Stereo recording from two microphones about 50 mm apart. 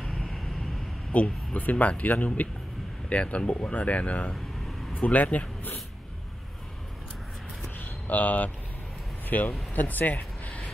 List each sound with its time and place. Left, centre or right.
0.1 s vehicle: centre
1.1 s speech: left
7.8 s a sound: left
9.5 s speech: left